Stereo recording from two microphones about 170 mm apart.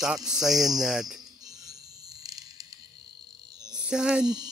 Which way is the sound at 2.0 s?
20° right (ahead or behind).